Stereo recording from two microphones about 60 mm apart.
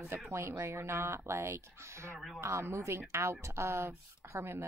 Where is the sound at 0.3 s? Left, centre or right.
Right.